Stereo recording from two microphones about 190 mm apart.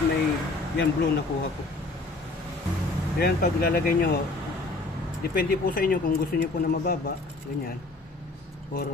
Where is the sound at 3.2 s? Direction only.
55° left (ahead or behind).